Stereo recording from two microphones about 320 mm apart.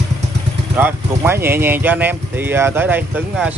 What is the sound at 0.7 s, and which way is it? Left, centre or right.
Speech, centre.